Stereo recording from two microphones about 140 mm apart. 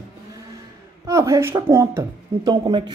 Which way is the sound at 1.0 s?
20° right (ahead or behind).